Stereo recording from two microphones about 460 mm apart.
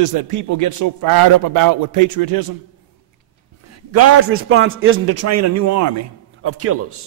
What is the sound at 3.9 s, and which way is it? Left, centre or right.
A man's voice, right.